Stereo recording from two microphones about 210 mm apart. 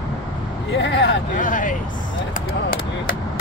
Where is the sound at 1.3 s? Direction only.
40° left (ahead or behind).